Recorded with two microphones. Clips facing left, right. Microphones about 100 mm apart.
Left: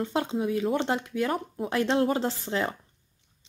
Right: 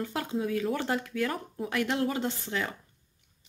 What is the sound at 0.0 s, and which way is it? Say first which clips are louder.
Speech: left 4 dB; 25° left (ahead or behind).